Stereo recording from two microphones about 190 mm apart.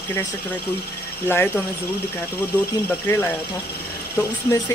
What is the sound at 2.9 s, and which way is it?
Speech, 10° left (ahead or behind).